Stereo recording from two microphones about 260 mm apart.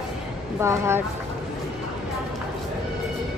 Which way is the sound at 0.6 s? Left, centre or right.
Centre.